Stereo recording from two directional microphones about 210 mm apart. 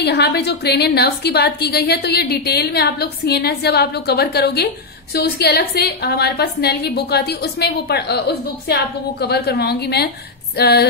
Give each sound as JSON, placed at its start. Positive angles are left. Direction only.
{"t": 0.0, "sound": "a woman's voice", "side_deg": 50}